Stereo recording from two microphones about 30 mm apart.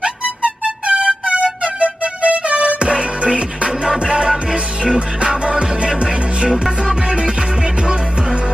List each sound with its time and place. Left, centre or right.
0.0 s music: right
4.3 s music: centre
5.3 s music: right